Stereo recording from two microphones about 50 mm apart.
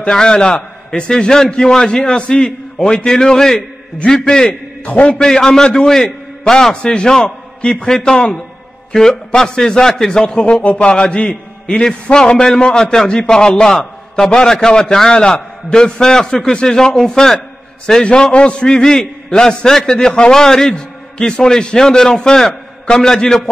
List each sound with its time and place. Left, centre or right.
0.0 s a man's voice: centre
4.5 s a man's voice: left
5.2 s a man's voice: centre